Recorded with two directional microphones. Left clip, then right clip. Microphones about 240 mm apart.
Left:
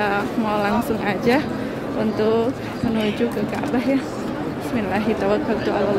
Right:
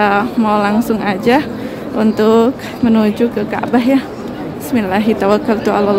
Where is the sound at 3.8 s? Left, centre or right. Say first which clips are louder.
Right 8 dB; centre.